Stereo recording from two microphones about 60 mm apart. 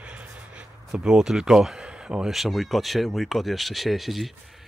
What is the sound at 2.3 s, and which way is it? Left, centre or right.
Speech, centre.